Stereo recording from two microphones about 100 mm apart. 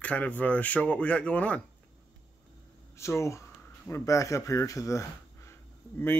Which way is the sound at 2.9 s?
30° left (ahead or behind).